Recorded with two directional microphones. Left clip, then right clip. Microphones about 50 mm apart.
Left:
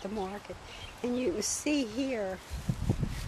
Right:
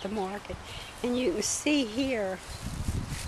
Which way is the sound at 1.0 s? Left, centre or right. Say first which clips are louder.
Right 3 dB; left.